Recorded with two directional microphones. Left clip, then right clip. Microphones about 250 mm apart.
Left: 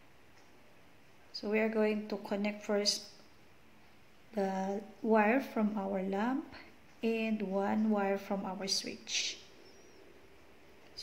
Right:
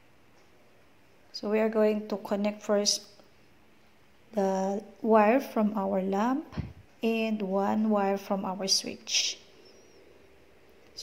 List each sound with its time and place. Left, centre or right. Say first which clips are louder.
1.3 s a woman's voice: right 5 dB; centre
4.4 s a woman's voice: right 7 dB; centre